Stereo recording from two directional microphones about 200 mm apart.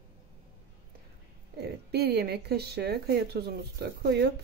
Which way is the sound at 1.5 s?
55° right (ahead or behind).